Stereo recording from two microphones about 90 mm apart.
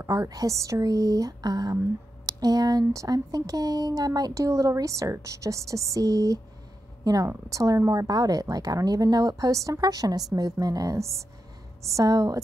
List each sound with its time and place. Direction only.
0.0 s a woman's voice: 40° right (ahead or behind)